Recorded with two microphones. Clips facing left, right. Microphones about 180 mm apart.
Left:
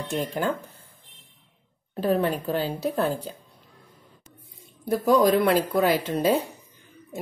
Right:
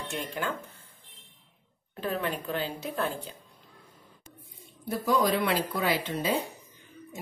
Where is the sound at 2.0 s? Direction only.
35° left (ahead or behind).